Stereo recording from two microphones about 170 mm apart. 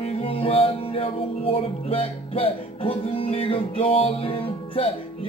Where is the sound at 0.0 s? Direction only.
35° left (ahead or behind).